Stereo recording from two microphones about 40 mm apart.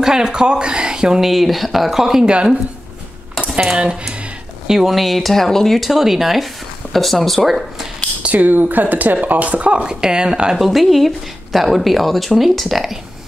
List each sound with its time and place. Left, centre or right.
0.0 s speech: centre
1.2 s speech: centre
2.2 s speech: right
3.7 s speech: right
4.6 s speech: centre
4.9 s speech: centre
5.8 s speech: centre
8.2 s speech: right
9.8 s speech: centre
10.6 s speech: centre